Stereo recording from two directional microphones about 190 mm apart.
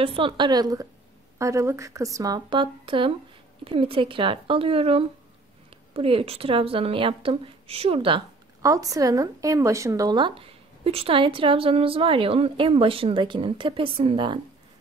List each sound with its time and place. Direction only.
0.0 s speech: 30° right (ahead or behind)
8.6 s speech: 15° right (ahead or behind)